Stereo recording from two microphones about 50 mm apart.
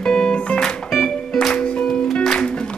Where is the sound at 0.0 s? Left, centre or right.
Centre.